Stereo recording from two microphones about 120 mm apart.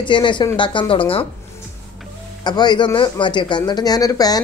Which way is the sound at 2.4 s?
35° left (ahead or behind).